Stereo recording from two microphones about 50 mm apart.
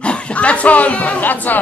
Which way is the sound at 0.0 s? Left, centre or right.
Left.